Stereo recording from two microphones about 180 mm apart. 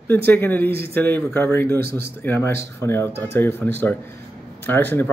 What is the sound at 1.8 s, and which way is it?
Speech, 60° right (ahead or behind).